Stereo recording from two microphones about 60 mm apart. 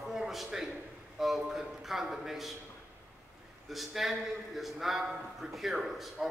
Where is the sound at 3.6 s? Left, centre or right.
Centre.